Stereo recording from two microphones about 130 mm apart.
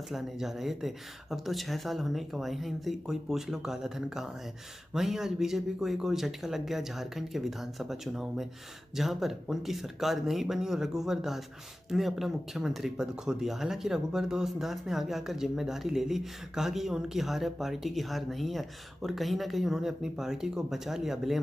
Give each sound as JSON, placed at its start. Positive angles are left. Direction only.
{"t": 0.1, "sound": "speech", "side_deg": 0}